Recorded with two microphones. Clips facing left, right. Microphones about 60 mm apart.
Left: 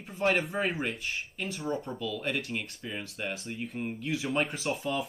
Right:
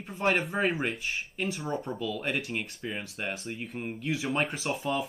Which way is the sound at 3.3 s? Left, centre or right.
Centre.